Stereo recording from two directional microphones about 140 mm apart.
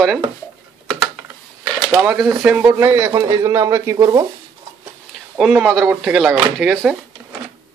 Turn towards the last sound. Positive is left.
turn(degrees=-5)  # may be behind; listen again after turning